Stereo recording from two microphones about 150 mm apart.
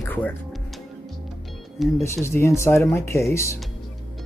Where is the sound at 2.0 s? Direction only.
15° left (ahead or behind).